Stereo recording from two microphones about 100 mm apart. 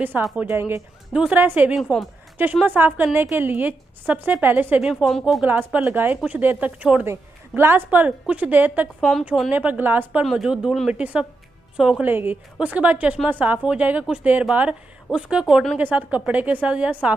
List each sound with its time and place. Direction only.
0.1 s speech: 20° right (ahead or behind)
1.1 s a woman's voice: 10° right (ahead or behind)
1.8 s speech: centre (ahead or behind)
2.3 s a woman's voice: 20° right (ahead or behind)
5.0 s speech: centre (ahead or behind)
5.4 s a woman's voice: 15° right (ahead or behind)
10.2 s a woman's voice: 5° right (ahead or behind)
12.1 s a woman's voice: 20° right (ahead or behind)